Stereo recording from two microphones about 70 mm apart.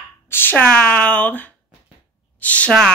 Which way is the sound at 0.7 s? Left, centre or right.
Centre.